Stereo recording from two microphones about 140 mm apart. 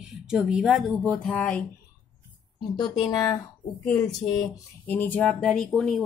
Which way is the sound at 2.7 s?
30° left (ahead or behind).